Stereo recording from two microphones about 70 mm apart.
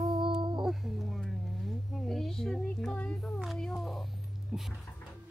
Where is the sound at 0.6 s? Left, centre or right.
Centre.